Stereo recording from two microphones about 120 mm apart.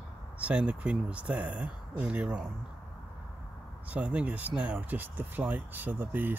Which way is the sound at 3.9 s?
10° right (ahead or behind).